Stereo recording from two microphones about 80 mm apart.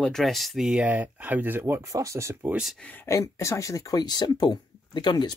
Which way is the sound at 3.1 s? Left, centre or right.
Left.